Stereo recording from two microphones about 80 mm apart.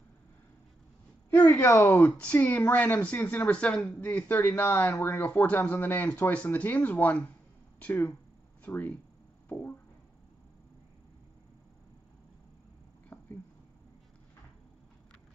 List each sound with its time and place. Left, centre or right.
1.5 s speech: left
2.2 s speech: left
13.1 s a sound: left